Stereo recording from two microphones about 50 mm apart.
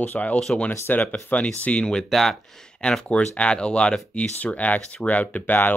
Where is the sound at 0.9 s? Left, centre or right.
Left.